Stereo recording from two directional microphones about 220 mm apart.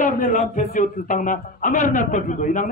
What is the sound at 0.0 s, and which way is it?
Speech, 35° left (ahead or behind).